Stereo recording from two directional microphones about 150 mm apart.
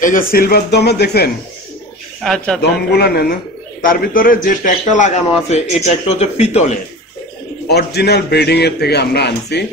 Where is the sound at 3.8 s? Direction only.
70° left (ahead or behind); by 6.7 s 45° left (ahead or behind).